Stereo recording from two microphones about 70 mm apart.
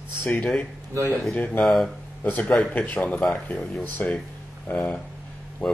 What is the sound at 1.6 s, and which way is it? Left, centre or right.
Speech, centre.